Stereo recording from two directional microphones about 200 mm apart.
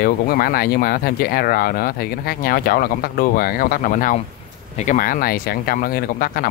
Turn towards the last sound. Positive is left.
turn(degrees=45)  # may be behind; listen again after turning